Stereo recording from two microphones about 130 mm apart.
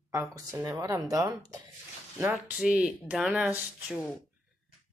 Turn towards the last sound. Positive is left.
turn(degrees=-10)  # may be behind; listen again after turning